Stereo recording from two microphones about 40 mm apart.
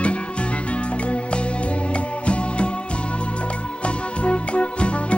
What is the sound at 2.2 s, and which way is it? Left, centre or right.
Music, left.